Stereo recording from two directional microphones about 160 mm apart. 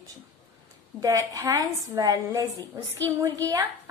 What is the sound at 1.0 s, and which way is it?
A woman's voice, 20° right (ahead or behind).